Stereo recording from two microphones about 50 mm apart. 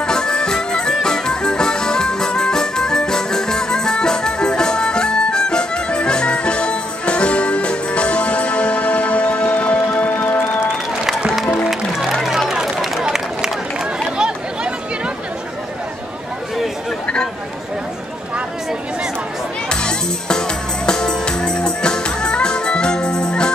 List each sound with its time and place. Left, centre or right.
0.0 s traditional music: centre
1.0 s music: centre; by 10.5 s left
11.3 s music: centre
12.4 s run: centre
14.1 s chatter: centre
19.7 s music: centre